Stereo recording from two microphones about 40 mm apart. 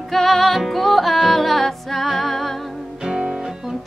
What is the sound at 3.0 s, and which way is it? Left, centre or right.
Music, centre.